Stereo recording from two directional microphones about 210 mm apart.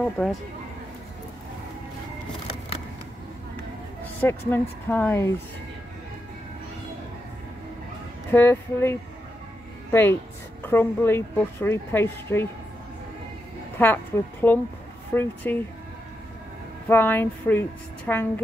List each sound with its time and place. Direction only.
0.2 s speech: 10° left (ahead or behind)
4.2 s speech: 10° left (ahead or behind)
8.3 s a woman's voice: 10° left (ahead or behind)
13.7 s speech: 10° left (ahead or behind)
16.8 s speech: 10° left (ahead or behind)